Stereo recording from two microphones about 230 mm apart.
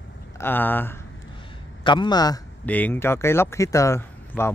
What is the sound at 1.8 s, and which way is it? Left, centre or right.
Speech, centre.